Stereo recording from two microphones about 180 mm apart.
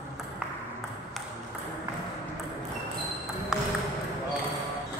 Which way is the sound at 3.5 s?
5° right (ahead or behind).